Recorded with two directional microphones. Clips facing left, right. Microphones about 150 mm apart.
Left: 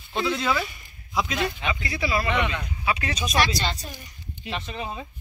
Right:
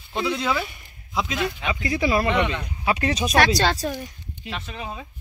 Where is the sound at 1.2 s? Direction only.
Centre (ahead or behind).